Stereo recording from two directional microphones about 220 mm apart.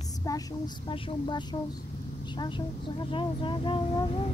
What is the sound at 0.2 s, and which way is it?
Speech, 15° left (ahead or behind).